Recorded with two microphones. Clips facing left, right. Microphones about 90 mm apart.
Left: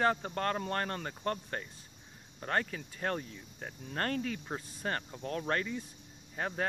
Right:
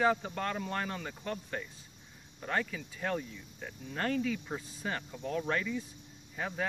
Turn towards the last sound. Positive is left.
turn(degrees=45)  # may be behind; listen again after turning